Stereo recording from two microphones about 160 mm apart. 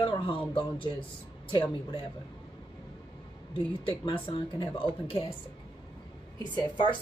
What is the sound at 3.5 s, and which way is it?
Speech, 35° left (ahead or behind).